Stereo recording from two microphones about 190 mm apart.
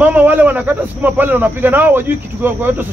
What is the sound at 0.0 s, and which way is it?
Speech, 10° right (ahead or behind).